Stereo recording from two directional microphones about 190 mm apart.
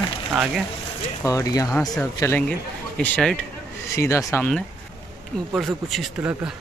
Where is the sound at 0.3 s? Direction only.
5° right (ahead or behind).